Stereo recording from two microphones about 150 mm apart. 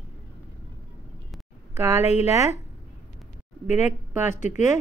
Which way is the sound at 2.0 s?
45° left (ahead or behind).